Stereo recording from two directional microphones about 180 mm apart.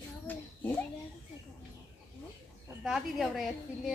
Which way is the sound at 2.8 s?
Centre (ahead or behind).